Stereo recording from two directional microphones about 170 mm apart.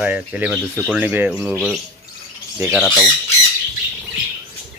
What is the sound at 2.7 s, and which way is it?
Speech, centre (ahead or behind).